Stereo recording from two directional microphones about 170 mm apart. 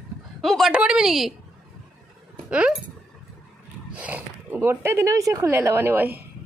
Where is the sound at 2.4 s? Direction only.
5° right (ahead or behind).